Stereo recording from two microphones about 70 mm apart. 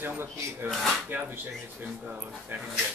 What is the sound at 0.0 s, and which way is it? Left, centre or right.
Speech, right.